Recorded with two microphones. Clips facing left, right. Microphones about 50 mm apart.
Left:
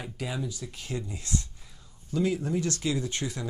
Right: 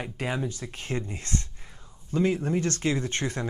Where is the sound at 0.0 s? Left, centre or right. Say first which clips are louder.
Right 4 dB; right.